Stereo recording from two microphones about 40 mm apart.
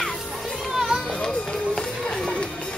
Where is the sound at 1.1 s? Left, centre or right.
Centre.